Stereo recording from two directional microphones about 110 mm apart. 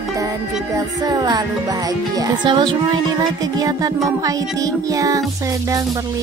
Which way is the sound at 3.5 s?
35° right (ahead or behind).